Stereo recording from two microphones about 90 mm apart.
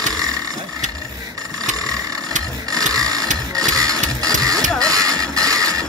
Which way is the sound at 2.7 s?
40° right (ahead or behind).